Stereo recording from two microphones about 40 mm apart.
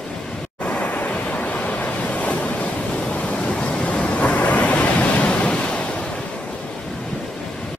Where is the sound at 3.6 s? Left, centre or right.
Left.